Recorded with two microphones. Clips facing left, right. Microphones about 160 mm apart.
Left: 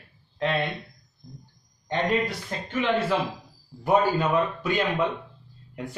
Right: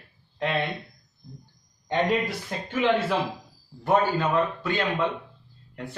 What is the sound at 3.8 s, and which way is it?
A man's voice, 15° left (ahead or behind).